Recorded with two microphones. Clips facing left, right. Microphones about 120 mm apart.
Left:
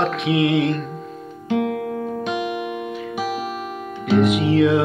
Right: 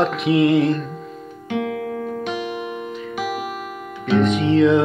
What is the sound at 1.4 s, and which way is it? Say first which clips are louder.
Music: left 2 dB; 30° left (ahead or behind).